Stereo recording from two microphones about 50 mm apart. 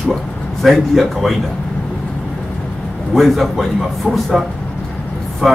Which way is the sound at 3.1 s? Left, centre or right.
Centre.